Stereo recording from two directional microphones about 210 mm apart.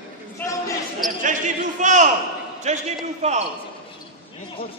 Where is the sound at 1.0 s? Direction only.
35° right (ahead or behind).